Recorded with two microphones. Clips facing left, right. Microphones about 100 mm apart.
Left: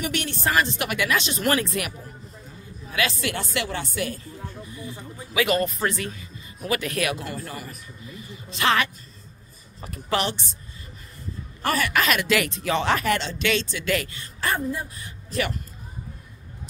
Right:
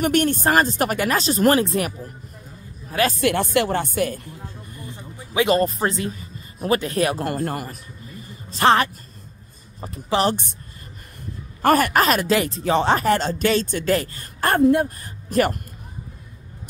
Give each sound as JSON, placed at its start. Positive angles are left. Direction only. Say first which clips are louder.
{"t": 0.0, "sound": "speech", "louder": "right 8 dB", "side_deg": -50}
{"t": 3.2, "sound": "speech", "louder": "right 9 dB", "side_deg": -55}
{"t": 5.3, "sound": "speech", "louder": "right 4 dB", "side_deg": -30}
{"t": 7.2, "sound": "speech", "louder": "right 9 dB", "side_deg": -55}
{"t": 8.5, "sound": "a woman's voice", "louder": "right 6 dB", "side_deg": -35}
{"t": 10.1, "sound": "speech", "louder": "right 5 dB", "side_deg": -20}
{"t": 11.6, "sound": "speech", "louder": "right 7 dB", "side_deg": -50}
{"t": 14.6, "sound": "speech", "louder": "right 13 dB", "side_deg": -65}
{"t": 15.0, "sound": "speech", "louder": "right 8 dB", "side_deg": -50}